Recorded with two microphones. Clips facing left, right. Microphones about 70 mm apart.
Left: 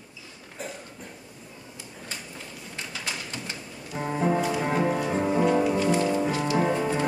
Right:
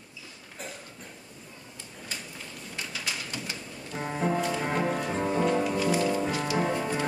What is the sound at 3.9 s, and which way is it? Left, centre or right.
Music, centre.